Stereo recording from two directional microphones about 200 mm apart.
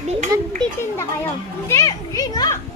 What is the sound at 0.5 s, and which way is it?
Children playing, 10° left (ahead or behind).